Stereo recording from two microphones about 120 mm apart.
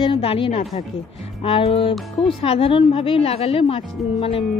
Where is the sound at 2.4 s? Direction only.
50° left (ahead or behind).